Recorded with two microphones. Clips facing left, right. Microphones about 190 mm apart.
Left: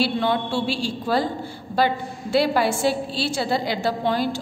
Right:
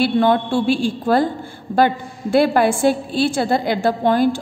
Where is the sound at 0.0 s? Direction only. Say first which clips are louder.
Right 6 dB; 50° right (ahead or behind).